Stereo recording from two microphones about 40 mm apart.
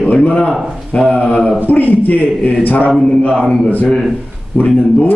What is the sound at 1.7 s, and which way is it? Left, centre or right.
A man's voice, left.